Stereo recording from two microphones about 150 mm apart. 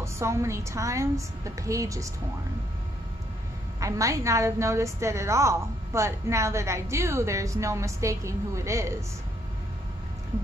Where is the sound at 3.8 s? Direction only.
20° right (ahead or behind).